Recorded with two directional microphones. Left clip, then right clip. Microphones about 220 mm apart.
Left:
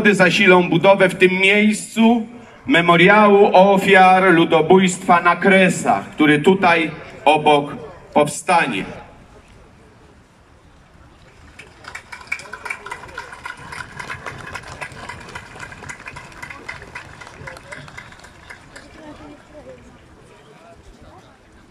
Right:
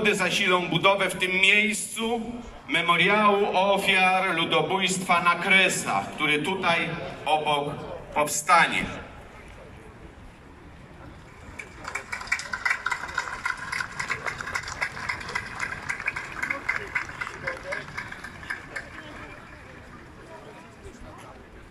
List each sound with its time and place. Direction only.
0.0 s a man's voice: 45° left (ahead or behind)
11.5 s vehicle: 40° left (ahead or behind)
17.7 s run: 30° left (ahead or behind)